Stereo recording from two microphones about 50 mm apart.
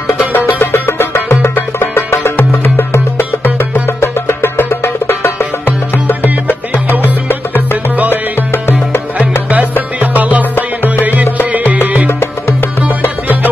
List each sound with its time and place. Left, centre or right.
0.3 s music: left
2.3 s music: left
3.8 s music: left
7.9 s music: right
8.4 s music: left
9.9 s music: right
11.7 s music: right
12.1 s music: left